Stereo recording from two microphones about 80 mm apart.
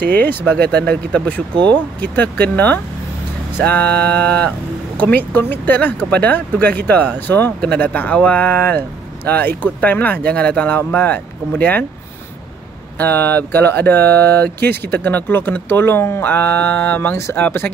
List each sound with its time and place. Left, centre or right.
0.3 s speech: left
13.0 s speech: left